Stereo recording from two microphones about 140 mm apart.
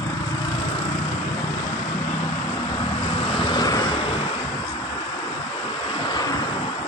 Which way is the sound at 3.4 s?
30° left (ahead or behind).